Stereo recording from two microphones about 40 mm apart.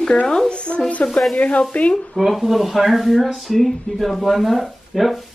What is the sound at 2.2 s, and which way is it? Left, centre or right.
Speech, centre.